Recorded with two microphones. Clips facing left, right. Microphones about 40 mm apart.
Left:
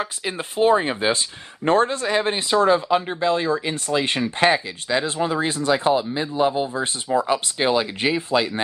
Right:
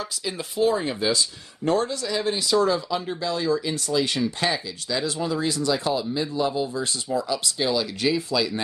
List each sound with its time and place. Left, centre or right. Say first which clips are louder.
0.0 s speech: left 4 dB; left